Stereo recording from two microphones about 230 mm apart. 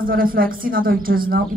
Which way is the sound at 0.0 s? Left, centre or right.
Right.